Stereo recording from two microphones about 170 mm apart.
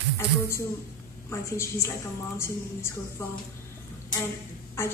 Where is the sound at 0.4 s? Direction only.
15° left (ahead or behind).